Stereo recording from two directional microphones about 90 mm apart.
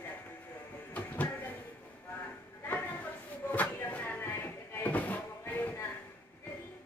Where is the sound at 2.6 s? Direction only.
20° left (ahead or behind).